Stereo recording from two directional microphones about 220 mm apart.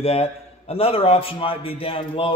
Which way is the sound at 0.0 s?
25° left (ahead or behind).